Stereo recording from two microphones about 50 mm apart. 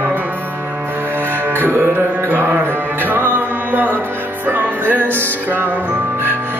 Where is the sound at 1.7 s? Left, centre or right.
Right.